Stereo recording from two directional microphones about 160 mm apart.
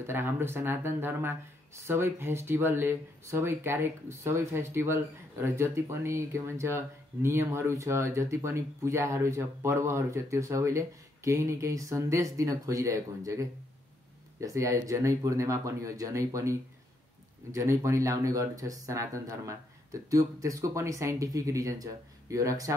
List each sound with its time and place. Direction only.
0.0 s speech: 15° right (ahead or behind)